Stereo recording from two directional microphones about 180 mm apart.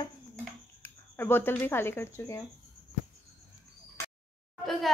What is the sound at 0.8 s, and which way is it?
Speech, 10° left (ahead or behind).